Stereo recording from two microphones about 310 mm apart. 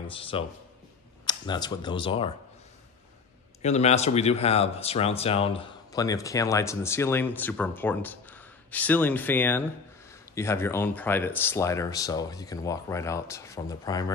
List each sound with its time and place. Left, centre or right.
0.1 s speech: centre
3.6 s speech: left